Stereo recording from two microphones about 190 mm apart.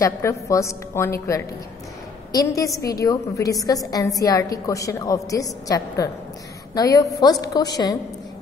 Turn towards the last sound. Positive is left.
turn(degrees=20)  # may be behind; listen again after turning